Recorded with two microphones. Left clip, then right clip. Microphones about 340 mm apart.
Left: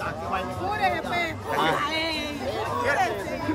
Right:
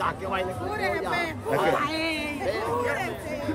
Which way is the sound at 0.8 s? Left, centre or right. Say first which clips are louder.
Left 1 dB; centre.